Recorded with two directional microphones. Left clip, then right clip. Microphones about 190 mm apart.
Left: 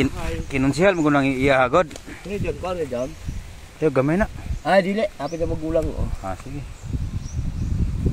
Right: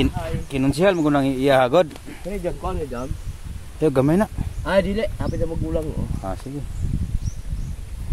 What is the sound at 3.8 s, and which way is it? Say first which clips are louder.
Speech: right 1 dB; 35° right (ahead or behind).